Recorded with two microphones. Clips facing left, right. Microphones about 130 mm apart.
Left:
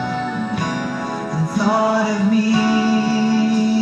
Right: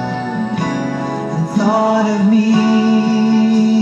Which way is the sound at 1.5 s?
25° right (ahead or behind).